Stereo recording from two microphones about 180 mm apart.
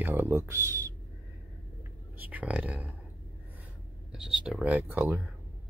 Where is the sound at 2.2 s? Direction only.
10° right (ahead or behind).